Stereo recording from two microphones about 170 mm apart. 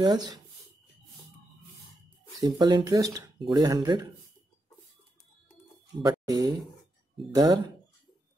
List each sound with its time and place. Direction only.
0.0 s speech: 25° right (ahead or behind)
2.4 s speech: 25° right (ahead or behind)
6.0 s speech: 20° right (ahead or behind)